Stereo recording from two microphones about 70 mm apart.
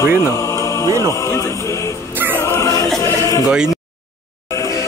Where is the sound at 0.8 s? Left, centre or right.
Right.